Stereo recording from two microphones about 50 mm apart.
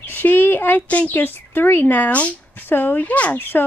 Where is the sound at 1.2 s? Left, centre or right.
Left.